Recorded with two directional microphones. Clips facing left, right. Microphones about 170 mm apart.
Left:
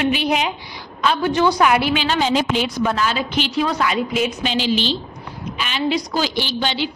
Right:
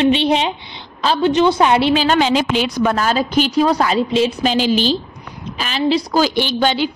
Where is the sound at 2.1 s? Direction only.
90° right.